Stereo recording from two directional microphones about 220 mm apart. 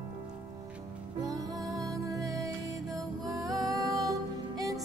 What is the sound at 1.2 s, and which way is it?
Music, 15° right (ahead or behind).